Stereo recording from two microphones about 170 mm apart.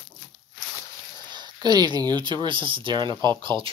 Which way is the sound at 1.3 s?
25° right (ahead or behind).